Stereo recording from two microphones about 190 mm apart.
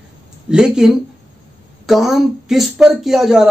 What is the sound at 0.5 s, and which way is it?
Speech, 5° right (ahead or behind).